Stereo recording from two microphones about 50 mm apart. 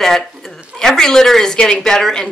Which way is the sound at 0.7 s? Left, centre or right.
Centre.